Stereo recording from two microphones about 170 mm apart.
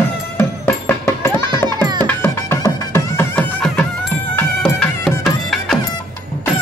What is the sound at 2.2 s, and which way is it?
Music, 15° left (ahead or behind).